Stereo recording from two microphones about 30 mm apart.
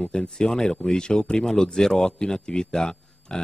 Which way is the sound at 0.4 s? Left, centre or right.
Left.